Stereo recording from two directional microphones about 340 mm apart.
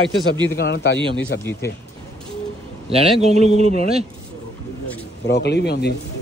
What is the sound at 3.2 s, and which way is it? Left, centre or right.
Speech, centre.